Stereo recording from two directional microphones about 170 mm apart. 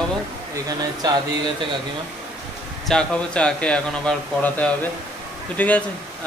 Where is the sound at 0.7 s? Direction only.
25° right (ahead or behind).